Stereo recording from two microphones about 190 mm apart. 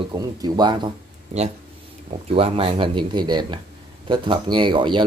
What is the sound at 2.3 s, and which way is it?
A man's voice, 30° right (ahead or behind).